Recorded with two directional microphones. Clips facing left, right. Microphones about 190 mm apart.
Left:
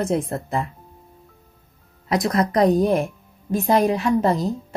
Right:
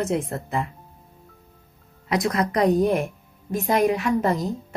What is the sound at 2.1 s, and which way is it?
Speech, 35° left (ahead or behind).